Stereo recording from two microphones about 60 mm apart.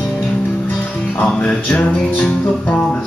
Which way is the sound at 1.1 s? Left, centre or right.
Left.